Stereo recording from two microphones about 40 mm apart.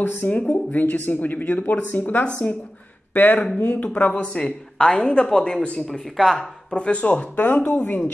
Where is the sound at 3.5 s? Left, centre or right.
Left.